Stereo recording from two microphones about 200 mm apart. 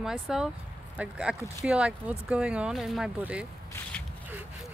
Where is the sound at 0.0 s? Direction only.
Centre (ahead or behind).